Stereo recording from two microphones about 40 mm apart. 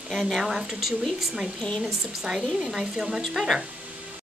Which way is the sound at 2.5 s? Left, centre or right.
Centre.